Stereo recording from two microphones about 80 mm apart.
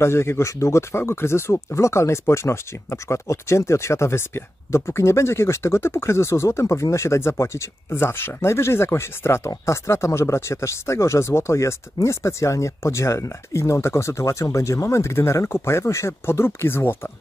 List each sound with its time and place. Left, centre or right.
0.0 s speech: left